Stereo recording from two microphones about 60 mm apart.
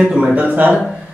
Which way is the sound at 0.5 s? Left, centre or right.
Right.